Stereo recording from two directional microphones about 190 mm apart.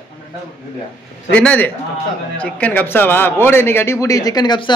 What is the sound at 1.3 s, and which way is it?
A man's voice, 5° left (ahead or behind).